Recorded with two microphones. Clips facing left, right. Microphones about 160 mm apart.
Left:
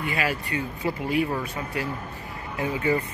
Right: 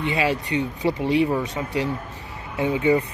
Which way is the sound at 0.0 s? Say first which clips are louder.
Right 5 dB; 25° right (ahead or behind).